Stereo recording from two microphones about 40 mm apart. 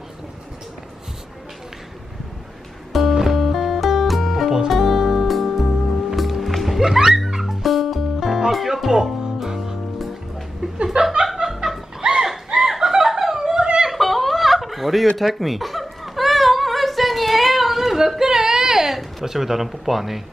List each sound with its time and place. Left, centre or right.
2.9 s music: centre
6.8 s music: centre
10.8 s chuckle: right
11.2 s snicker: centre
12.0 s a sound: right
12.5 s snicker: centre
13.6 s a sound: right
13.9 s giggle: centre
15.1 s a sound: centre
19.2 s speech: centre